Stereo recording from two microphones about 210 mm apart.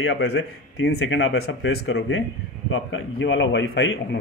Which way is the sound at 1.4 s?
55° left (ahead or behind).